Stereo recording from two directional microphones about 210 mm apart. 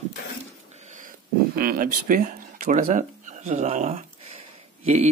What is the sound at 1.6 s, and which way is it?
Speech, 45° right (ahead or behind).